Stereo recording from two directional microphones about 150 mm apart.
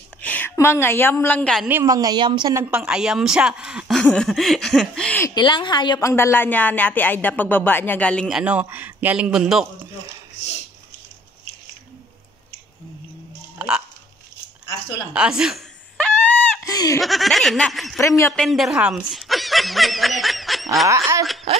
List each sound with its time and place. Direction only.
0.2 s a woman's voice: 10° left (ahead or behind)
1.7 s speech: 20° right (ahead or behind)
2.5 s a woman's voice: 10° right (ahead or behind); by 5.2 s 5° left (ahead or behind)
5.2 s speech: 30° left (ahead or behind); by 8.3 s 10° left (ahead or behind)
8.3 s a man's voice: 5° right (ahead or behind)
13.6 s music: 5° right (ahead or behind)
15.1 s a woman's voice: 5° right (ahead or behind)
16.0 s a sound: 5° left (ahead or behind)
16.6 s speech: 25° left (ahead or behind)
17.0 s a woman's voice: centre (ahead or behind)
18.0 s speech: 20° left (ahead or behind)
18.3 s snicker: centre (ahead or behind)